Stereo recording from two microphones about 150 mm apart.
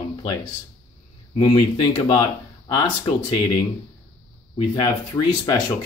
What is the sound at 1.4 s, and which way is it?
Speech, 30° left (ahead or behind).